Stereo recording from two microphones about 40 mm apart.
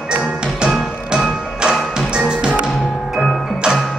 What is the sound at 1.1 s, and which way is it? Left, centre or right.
Music, centre.